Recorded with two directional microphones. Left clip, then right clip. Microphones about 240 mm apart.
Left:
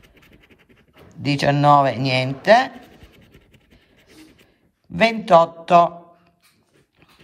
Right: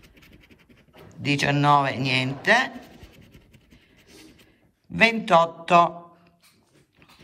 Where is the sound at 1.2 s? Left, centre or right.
Centre.